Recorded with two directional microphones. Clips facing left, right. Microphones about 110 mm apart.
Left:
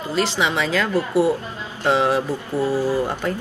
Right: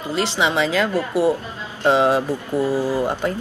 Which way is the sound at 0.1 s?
20° right (ahead or behind).